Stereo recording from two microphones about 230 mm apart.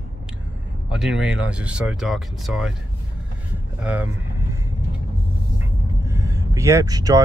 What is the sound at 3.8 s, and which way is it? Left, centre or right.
Speech, centre.